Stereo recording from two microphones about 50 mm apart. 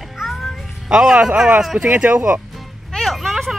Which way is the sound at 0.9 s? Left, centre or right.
Centre.